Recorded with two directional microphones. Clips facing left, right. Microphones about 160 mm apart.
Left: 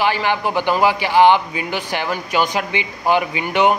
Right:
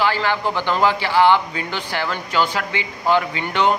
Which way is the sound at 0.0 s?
15° left (ahead or behind).